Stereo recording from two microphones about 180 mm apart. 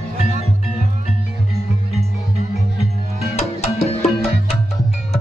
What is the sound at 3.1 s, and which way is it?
Music, 40° left (ahead or behind).